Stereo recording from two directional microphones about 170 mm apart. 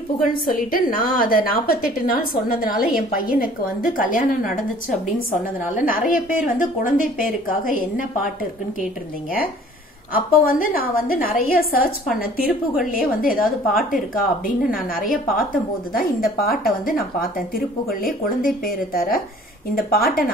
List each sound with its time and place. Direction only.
0.5 s a woman's voice: 55° left (ahead or behind)
5.8 s a woman's voice: 55° left (ahead or behind)
10.1 s a woman's voice: 55° left (ahead or behind)